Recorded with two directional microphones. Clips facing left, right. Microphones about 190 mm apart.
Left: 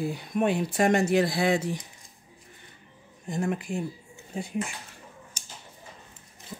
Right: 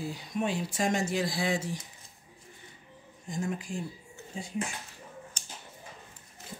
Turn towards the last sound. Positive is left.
turn(degrees=10)  # may be behind; listen again after turning